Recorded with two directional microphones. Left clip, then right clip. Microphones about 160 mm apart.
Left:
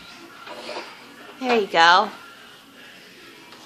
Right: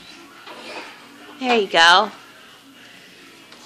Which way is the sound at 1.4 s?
20° right (ahead or behind).